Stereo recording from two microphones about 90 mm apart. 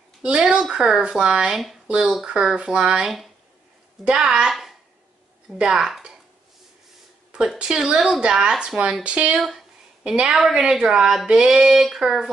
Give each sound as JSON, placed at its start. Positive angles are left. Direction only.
{"t": 0.2, "sound": "a woman's voice", "side_deg": -10}
{"t": 7.3, "sound": "speech", "side_deg": -10}
{"t": 9.4, "sound": "a woman's voice", "side_deg": -5}